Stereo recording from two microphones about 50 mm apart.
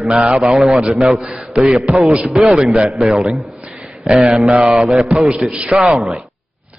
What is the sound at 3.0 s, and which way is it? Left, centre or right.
Speech, centre.